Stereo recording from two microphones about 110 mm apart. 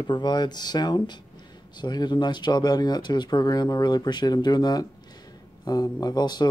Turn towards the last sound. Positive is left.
turn(degrees=40)  # may be behind; listen again after turning